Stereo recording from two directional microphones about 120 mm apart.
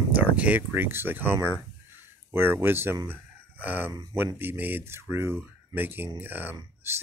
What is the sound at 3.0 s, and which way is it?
Chicken, 15° right (ahead or behind).